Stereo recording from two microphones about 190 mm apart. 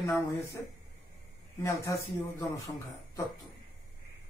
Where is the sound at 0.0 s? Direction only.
15° left (ahead or behind).